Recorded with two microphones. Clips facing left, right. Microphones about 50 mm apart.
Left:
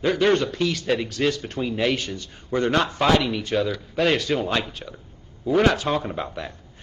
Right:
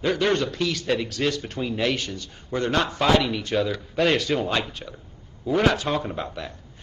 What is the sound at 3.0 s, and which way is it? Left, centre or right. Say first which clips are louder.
A man's voice: right 1 dB; centre.